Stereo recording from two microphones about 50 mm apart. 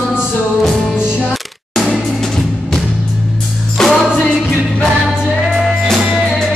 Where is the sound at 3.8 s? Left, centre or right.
Centre.